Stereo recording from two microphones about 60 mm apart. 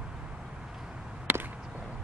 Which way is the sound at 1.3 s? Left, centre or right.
Right.